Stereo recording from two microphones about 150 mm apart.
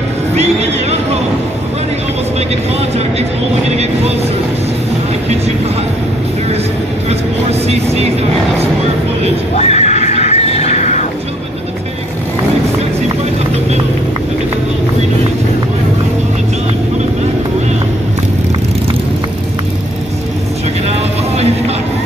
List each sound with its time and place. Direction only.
3.7 s speech: 45° right (ahead or behind)
7.6 s speech: 45° right (ahead or behind)
9.6 s horse: 50° left (ahead or behind)